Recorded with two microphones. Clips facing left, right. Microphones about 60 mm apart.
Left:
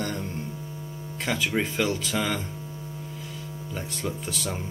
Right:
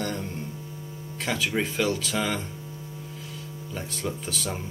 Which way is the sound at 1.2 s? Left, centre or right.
Centre.